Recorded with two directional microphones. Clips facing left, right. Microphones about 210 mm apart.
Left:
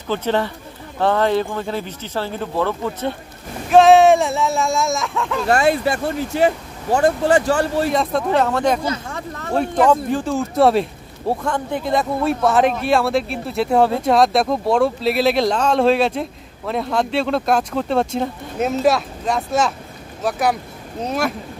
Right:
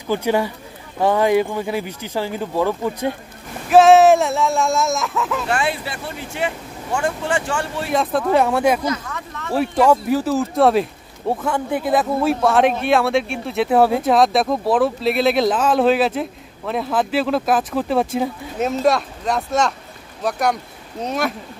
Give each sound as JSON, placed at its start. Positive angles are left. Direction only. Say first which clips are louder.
{"t": 0.1, "sound": "speech", "louder": "right 1 dB", "side_deg": -10}
{"t": 3.7, "sound": "speech", "louder": "even", "side_deg": 0}
{"t": 5.5, "sound": "speech", "louder": "left 6 dB", "side_deg": 45}
{"t": 7.9, "sound": "speech", "louder": "right 1 dB", "side_deg": 0}
{"t": 8.8, "sound": "a sound", "louder": "even", "side_deg": 30}
{"t": 9.5, "sound": "speech", "louder": "even", "side_deg": -5}